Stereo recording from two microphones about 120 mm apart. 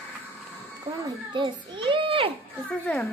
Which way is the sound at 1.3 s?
45° right (ahead or behind).